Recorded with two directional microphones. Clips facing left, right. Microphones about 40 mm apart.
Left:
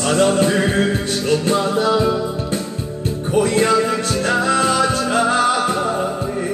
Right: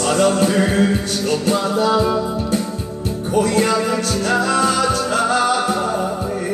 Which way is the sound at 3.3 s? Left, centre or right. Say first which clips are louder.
Left 1 dB; left.